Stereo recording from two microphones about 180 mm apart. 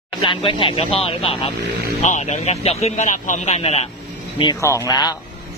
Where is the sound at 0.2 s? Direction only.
25° left (ahead or behind).